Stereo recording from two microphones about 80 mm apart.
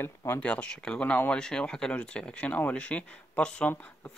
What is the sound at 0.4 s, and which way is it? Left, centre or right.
Speech, centre.